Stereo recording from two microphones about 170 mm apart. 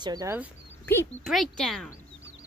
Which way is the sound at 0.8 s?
15° left (ahead or behind).